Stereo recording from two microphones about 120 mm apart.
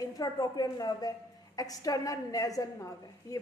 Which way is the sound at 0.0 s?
35° left (ahead or behind).